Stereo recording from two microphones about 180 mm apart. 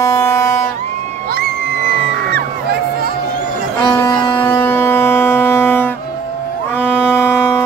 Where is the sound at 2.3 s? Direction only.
60° right (ahead or behind).